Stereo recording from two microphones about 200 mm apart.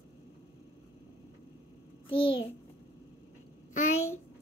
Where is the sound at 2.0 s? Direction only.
25° left (ahead or behind).